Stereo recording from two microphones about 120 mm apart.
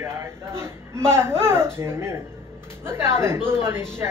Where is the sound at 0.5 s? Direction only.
20° right (ahead or behind).